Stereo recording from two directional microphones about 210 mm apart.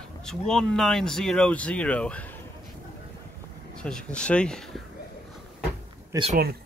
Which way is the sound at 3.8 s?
5° left (ahead or behind).